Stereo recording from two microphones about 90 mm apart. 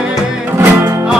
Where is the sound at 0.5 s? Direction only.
25° right (ahead or behind).